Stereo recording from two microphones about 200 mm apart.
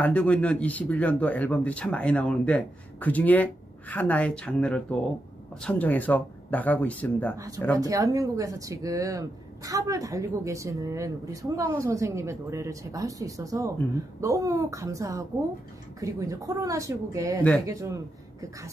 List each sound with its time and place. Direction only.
0.0 s speech: 5° left (ahead or behind)
7.3 s speech: 15° right (ahead or behind)